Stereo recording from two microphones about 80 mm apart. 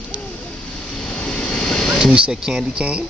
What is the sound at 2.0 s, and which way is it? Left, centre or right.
Speech, centre.